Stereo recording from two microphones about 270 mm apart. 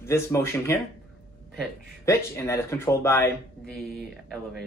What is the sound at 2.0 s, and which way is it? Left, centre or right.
Speech, centre.